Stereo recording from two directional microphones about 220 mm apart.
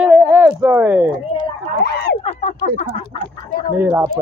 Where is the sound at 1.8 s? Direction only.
45° left (ahead or behind).